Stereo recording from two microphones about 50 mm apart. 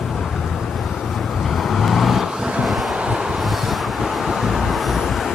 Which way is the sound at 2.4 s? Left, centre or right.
Centre.